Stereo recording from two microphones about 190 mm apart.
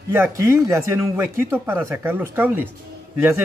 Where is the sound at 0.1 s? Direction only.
10° right (ahead or behind).